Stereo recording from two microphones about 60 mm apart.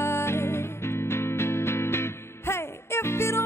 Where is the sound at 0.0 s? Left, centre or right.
Left.